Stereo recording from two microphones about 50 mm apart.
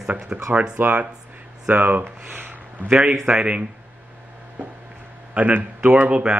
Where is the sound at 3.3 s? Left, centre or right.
Right.